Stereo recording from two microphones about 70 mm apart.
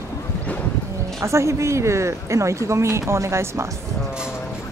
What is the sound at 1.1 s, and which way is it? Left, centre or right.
Speech, right.